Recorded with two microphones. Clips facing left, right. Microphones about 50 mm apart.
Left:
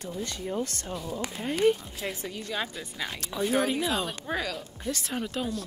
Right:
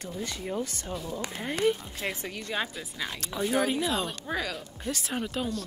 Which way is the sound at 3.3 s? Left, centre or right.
Centre.